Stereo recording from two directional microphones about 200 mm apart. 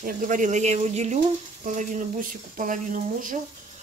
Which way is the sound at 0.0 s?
40° right (ahead or behind).